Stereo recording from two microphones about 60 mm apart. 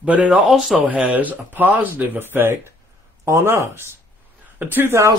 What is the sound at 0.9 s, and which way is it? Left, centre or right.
Speech, right.